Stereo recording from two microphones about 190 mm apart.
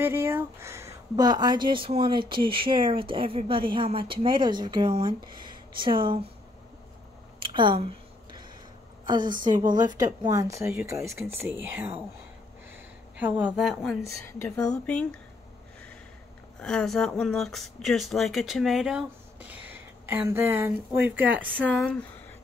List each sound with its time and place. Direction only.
0.0 s speech: 10° right (ahead or behind)
7.4 s a sound: 25° right (ahead or behind)
9.0 s speech: 25° right (ahead or behind)
13.2 s speech: 5° right (ahead or behind)
14.2 s speech: 10° left (ahead or behind)
16.5 s speech: 5° left (ahead or behind)
21.8 s speech: 5° left (ahead or behind)